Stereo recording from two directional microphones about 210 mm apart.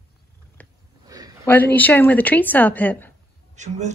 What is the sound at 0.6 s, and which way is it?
Sniff, 5° left (ahead or behind).